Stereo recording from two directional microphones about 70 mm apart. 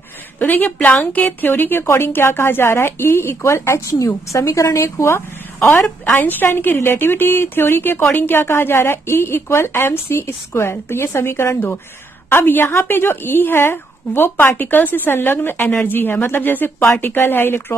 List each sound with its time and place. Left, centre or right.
0.4 s speech: left